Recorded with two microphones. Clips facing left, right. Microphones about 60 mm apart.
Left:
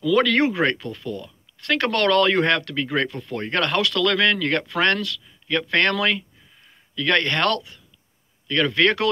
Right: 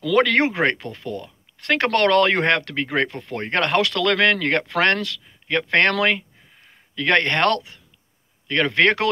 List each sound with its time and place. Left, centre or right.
0.1 s speech: right